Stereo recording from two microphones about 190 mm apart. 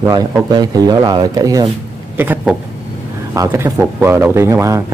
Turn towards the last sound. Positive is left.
turn(degrees=-15)  # may be behind; listen again after turning